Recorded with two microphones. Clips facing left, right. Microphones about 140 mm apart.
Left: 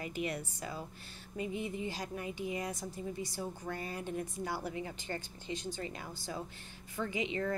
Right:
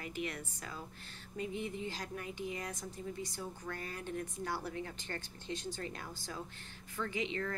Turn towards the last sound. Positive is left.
turn(degrees=15)  # may be behind; listen again after turning